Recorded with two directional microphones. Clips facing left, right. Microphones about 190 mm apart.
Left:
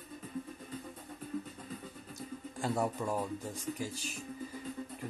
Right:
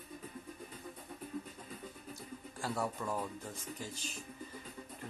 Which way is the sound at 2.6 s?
20° left (ahead or behind).